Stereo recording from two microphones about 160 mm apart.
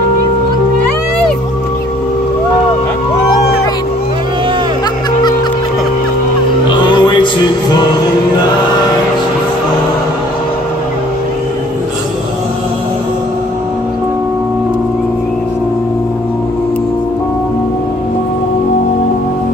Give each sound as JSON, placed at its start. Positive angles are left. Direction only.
{"t": 6.7, "sound": "music", "side_deg": 30}